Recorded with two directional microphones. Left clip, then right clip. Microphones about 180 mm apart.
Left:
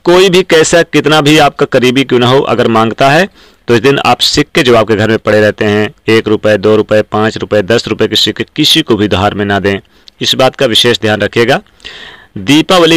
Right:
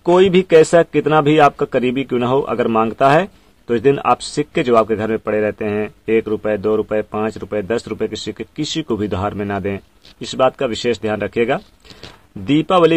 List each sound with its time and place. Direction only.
0.0 s speech: 25° left (ahead or behind)